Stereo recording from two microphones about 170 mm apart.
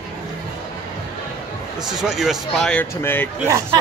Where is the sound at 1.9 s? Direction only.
5° right (ahead or behind).